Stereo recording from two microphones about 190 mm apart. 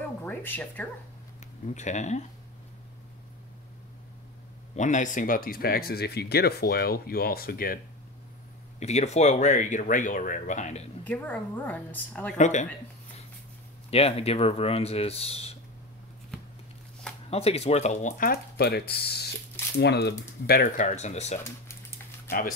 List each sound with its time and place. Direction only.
0.2 s a sound: 10° left (ahead or behind)
1.4 s speech: 40° left (ahead or behind)
4.7 s speech: 40° left (ahead or behind)
8.7 s speech: 35° left (ahead or behind)
11.1 s a woman's voice: 10° left (ahead or behind)
12.4 s speech: 40° left (ahead or behind)
13.8 s speech: 30° left (ahead or behind)
17.3 s speech: 30° left (ahead or behind)
21.4 s speech: 15° left (ahead or behind)